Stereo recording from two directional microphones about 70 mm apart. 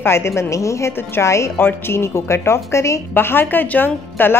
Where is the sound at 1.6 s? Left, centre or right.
Left.